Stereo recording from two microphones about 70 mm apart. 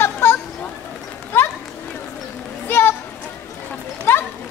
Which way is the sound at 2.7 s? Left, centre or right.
Left.